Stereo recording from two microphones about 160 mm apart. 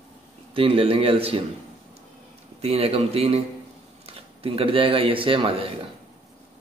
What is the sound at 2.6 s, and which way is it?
Speech, 40° right (ahead or behind).